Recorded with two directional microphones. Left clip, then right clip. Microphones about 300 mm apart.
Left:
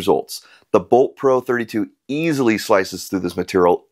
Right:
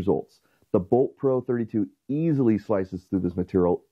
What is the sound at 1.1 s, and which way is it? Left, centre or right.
Speech, centre.